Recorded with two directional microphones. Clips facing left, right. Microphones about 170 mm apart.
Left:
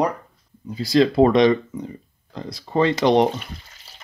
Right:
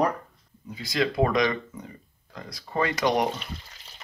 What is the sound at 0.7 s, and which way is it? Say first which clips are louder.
Speech: left 9 dB; 35° left (ahead or behind).